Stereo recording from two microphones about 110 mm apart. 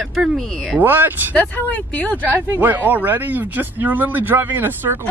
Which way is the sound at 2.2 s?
20° right (ahead or behind).